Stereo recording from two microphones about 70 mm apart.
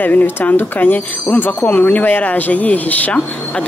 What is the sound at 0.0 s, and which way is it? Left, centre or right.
Speech, left.